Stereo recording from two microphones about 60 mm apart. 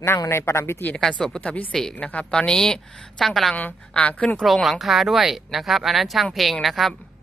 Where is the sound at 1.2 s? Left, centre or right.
Centre.